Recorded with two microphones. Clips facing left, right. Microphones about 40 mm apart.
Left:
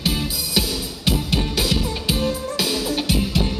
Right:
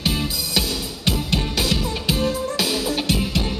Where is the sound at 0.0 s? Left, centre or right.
Centre.